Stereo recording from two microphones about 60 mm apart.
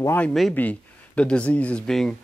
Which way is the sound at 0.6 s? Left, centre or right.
Left.